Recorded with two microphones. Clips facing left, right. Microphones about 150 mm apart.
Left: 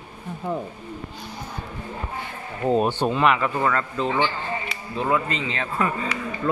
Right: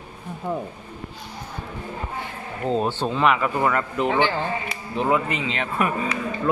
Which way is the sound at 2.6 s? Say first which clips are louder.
Left 3 dB; 15° left (ahead or behind).